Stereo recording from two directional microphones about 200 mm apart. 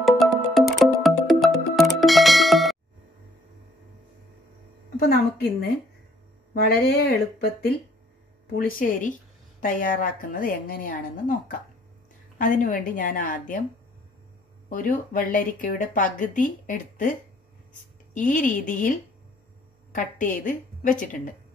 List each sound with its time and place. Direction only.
0.0 s music: centre (ahead or behind)
4.9 s a woman's voice: 55° left (ahead or behind)
12.4 s speech: 40° left (ahead or behind)
14.7 s speech: 45° left (ahead or behind)